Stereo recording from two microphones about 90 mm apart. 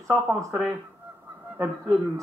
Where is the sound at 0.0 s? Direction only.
35° right (ahead or behind).